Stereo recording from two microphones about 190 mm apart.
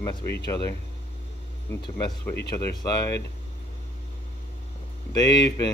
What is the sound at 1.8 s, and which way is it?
Speech, 20° left (ahead or behind).